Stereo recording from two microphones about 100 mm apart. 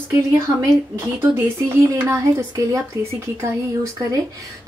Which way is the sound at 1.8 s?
35° right (ahead or behind).